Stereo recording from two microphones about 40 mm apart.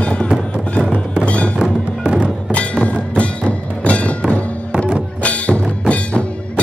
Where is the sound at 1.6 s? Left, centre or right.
Right.